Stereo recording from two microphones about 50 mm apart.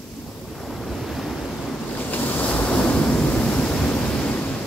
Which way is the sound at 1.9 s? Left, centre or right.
Left.